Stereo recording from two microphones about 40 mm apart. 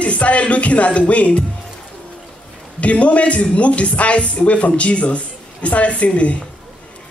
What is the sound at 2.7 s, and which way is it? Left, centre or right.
A man's voice, left.